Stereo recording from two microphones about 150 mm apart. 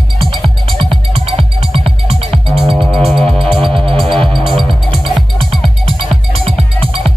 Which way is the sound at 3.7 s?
40° right (ahead or behind).